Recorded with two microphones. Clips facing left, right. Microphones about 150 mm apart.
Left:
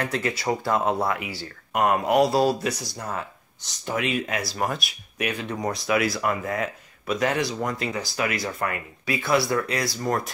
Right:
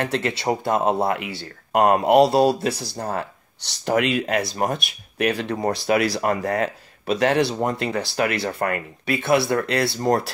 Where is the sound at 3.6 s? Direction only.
75° right (ahead or behind).